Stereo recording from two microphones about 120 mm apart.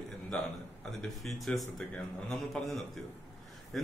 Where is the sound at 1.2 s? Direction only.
Centre (ahead or behind).